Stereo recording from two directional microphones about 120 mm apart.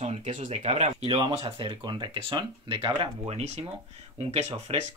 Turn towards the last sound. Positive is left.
turn(degrees=-55)  # may be behind; listen again after turning